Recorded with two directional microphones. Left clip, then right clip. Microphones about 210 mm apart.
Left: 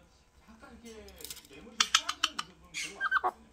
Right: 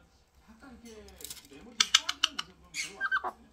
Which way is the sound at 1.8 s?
10° left (ahead or behind).